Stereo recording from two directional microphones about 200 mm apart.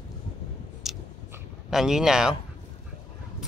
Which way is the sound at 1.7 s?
Centre (ahead or behind).